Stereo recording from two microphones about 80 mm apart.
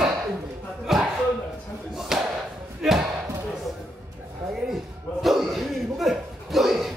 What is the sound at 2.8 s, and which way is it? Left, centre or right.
Basketball bounce, centre.